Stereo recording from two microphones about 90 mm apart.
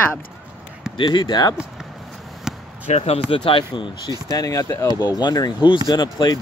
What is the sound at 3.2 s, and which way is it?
Speech, 80° left.